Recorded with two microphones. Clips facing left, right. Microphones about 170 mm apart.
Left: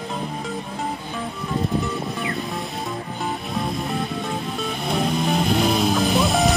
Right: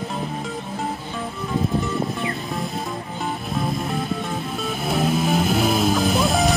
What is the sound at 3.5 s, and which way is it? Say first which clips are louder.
Music: right 2 dB; centre (ahead or behind).